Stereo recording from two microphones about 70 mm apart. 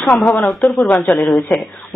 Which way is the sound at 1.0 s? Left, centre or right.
Centre.